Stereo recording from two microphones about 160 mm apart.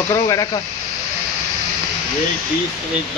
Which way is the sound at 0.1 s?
20° left (ahead or behind).